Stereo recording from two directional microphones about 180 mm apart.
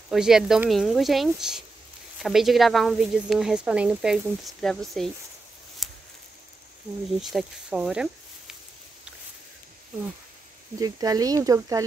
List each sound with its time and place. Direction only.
0.1 s speech: 5° right (ahead or behind)
5.8 s a sound: centre (ahead or behind)
7.2 s speech: centre (ahead or behind)
10.8 s speech: 20° right (ahead or behind)